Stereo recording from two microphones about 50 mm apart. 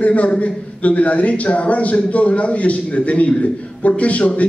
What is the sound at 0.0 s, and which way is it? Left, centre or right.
A man's voice, left.